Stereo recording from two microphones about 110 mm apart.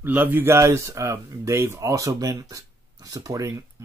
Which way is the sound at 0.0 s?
20° right (ahead or behind).